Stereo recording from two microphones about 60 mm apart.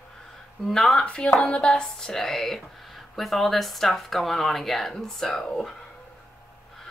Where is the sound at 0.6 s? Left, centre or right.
Centre.